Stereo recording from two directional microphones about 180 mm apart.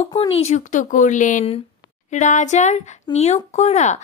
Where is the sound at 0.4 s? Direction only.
40° left (ahead or behind).